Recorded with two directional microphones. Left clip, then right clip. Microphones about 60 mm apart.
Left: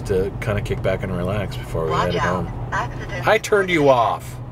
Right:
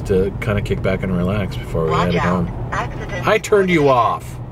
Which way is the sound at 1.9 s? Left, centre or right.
Right.